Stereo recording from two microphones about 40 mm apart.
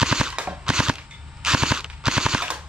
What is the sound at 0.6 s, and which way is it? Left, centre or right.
Cap gun, centre.